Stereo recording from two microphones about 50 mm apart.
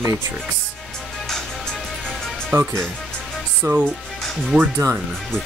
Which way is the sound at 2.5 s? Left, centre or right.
Right.